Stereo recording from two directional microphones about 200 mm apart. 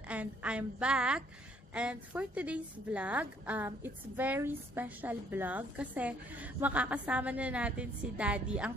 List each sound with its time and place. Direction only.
0.1 s a woman's voice: 5° right (ahead or behind)